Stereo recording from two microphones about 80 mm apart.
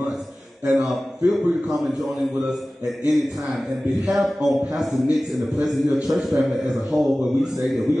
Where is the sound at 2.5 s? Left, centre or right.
Centre.